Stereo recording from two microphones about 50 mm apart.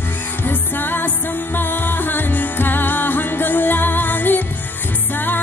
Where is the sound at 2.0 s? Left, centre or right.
Left.